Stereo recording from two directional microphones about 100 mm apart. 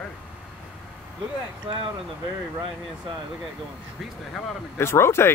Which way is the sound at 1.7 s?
65° right (ahead or behind).